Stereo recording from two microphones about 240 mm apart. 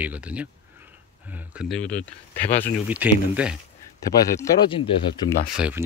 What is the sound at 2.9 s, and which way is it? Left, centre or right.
Speech, centre.